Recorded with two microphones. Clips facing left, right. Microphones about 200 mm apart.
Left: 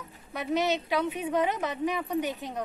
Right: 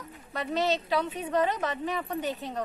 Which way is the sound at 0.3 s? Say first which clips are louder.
Left 1 dB; 20° left (ahead or behind).